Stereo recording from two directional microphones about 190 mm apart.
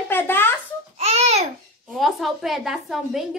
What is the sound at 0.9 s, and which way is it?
Speech, 35° right (ahead or behind).